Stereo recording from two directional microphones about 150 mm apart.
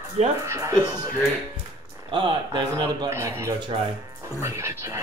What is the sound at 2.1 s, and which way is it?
Speech, 35° right (ahead or behind).